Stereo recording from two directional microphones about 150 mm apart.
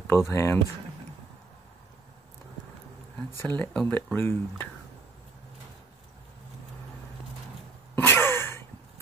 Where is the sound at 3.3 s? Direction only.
15° left (ahead or behind).